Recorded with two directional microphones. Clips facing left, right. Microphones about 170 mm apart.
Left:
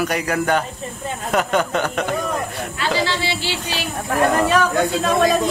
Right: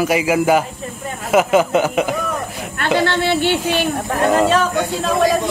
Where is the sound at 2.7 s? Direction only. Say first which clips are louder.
Right 5 dB; 55° right (ahead or behind).